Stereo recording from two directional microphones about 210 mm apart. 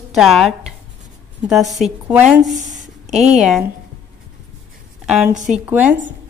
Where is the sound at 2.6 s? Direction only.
35° right (ahead or behind).